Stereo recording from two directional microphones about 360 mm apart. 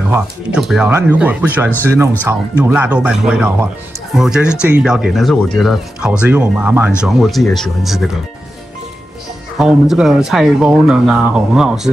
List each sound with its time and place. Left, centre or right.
0.1 s speech: centre
9.6 s speech: centre